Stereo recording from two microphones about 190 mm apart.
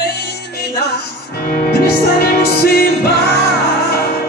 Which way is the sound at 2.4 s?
55° left (ahead or behind).